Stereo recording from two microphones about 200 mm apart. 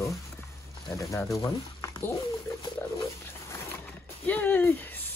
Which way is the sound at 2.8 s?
15° left (ahead or behind).